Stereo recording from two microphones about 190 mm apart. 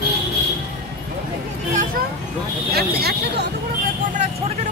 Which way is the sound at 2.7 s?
55° right (ahead or behind).